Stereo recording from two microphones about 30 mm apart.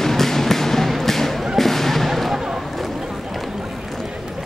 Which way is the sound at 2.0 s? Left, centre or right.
Centre.